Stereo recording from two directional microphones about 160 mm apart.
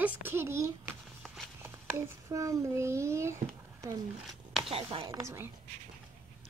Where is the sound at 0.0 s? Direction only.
15° right (ahead or behind).